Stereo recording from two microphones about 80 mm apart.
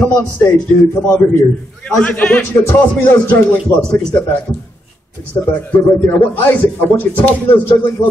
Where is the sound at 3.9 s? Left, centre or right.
Centre.